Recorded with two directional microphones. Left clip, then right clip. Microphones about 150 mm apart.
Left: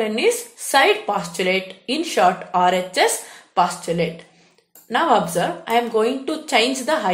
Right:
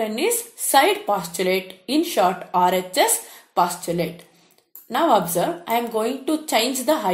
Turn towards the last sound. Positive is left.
turn(degrees=-35)  # may be behind; listen again after turning